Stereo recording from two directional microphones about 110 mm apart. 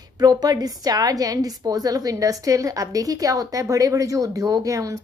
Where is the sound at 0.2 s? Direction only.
35° right (ahead or behind).